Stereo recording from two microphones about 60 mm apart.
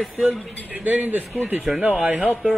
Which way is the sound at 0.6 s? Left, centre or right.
Right.